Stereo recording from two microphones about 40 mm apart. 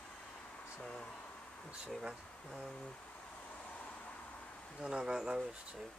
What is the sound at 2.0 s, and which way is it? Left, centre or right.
Speech, centre.